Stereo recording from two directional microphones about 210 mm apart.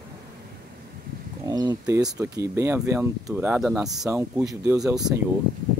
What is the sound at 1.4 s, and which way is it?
Speech, 20° right (ahead or behind).